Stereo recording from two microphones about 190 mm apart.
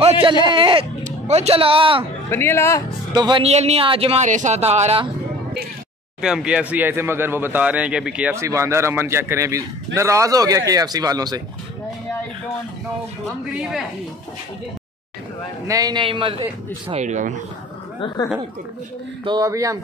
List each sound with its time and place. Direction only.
0.6 s speech: 25° right (ahead or behind)
2.3 s speech: 15° left (ahead or behind)
3.2 s speech: 25° right (ahead or behind)
6.2 s speech: 5° right (ahead or behind); by 11.4 s 20° right (ahead or behind)
13.5 s a man's voice: centre (ahead or behind)
15.6 s speech: 20° right (ahead or behind)
16.9 s speech: 40° right (ahead or behind)
18.0 s speech: 20° left (ahead or behind)
19.2 s speech: 20° right (ahead or behind)